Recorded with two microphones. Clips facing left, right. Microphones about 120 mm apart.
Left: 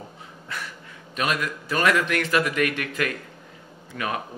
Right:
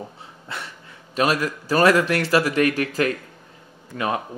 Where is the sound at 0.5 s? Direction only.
30° right (ahead or behind).